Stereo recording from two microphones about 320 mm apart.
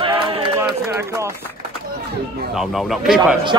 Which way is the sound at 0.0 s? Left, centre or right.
Centre.